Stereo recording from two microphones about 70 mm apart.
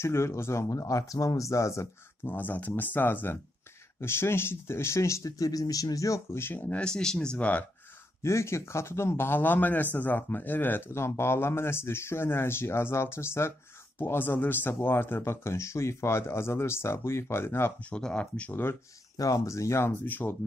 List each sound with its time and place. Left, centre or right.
0.0 s speech: left
2.2 s speech: left
6.4 s speech: left
6.8 s speech: centre
8.2 s speech: left
17.8 s speech: centre
19.1 s speech: left
20.0 s speech: left